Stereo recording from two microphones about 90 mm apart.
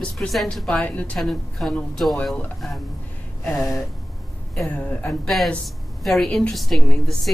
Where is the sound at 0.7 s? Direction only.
15° left (ahead or behind).